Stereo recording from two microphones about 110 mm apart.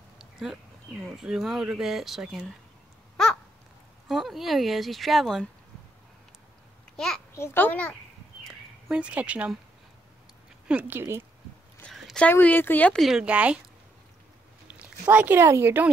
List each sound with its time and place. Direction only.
0.2 s a sound: 5° right (ahead or behind)
1.0 s speech: 5° right (ahead or behind)
4.1 s speech: centre (ahead or behind)
7.3 s speech: 20° left (ahead or behind)
8.8 s speech: 10° right (ahead or behind)
10.7 s speech: 15° right (ahead or behind)
11.9 s a sound: centre (ahead or behind)
12.3 s speech: 15° left (ahead or behind)
13.0 s speech: 5° right (ahead or behind)
14.8 s speech: 15° right (ahead or behind)